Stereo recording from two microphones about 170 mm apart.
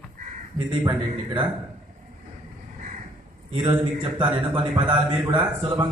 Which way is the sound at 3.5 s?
30° right (ahead or behind).